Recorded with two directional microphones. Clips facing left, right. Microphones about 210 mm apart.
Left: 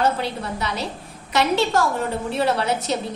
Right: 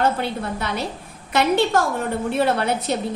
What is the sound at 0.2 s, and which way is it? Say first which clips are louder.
A woman's voice: right 1 dB; 55° right (ahead or behind).